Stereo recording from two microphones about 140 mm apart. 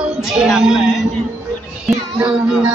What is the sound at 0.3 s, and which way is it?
Music, 5° right (ahead or behind).